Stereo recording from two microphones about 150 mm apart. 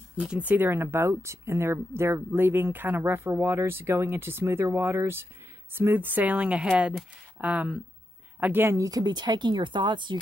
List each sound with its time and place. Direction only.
0.2 s a woman's voice: 10° right (ahead or behind); by 10.1 s 30° right (ahead or behind)